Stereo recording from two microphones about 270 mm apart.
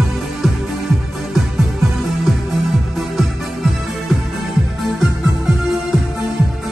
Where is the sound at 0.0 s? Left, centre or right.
Centre.